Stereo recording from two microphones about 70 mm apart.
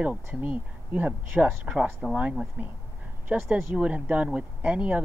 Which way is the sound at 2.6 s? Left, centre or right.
Right.